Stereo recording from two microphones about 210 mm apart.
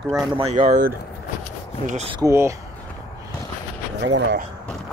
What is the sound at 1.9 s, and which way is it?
Speech, 30° right (ahead or behind).